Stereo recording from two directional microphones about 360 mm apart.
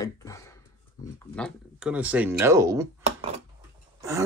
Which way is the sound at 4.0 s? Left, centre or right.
Centre.